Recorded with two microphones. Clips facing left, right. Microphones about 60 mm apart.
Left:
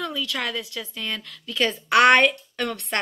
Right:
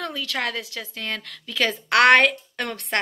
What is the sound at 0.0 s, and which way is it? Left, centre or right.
A woman's voice, right.